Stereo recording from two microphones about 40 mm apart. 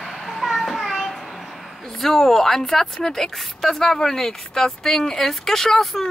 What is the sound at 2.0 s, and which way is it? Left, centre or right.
Speech, centre.